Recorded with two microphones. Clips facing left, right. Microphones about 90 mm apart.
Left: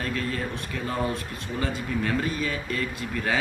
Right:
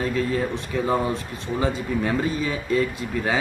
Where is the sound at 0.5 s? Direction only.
25° right (ahead or behind).